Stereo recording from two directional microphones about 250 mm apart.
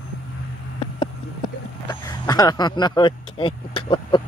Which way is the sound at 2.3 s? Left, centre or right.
Centre.